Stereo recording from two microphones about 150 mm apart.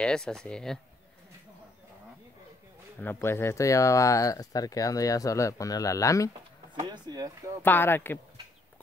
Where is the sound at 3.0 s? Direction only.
15° left (ahead or behind).